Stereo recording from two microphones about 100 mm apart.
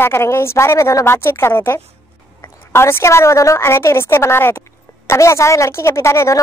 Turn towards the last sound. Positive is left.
turn(degrees=25)  # may be behind; listen again after turning